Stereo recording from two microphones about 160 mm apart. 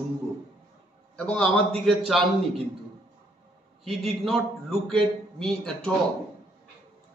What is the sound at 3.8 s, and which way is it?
Speech, centre (ahead or behind).